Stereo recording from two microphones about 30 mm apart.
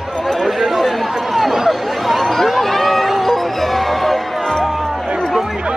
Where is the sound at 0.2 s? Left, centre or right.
Centre.